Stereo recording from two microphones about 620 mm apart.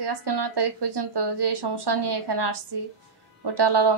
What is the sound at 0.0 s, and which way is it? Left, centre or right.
Speech, right.